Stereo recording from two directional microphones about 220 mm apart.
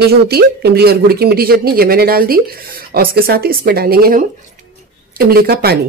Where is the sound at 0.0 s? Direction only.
45° right (ahead or behind).